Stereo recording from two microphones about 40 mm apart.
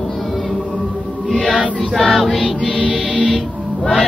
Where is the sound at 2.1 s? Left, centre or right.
Centre.